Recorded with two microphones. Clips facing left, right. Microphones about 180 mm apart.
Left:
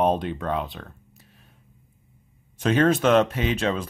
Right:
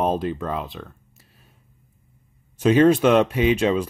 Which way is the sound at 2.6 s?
10° right (ahead or behind).